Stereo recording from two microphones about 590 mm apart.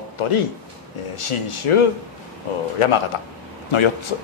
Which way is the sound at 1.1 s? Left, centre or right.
Left.